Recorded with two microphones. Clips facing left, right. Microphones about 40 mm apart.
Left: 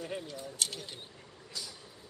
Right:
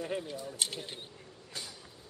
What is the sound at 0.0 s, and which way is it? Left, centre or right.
Speech, centre.